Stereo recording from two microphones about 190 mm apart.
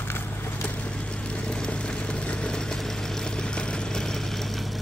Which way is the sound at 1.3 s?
5° left (ahead or behind).